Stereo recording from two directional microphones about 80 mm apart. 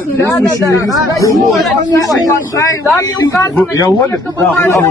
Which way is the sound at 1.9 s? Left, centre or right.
Left.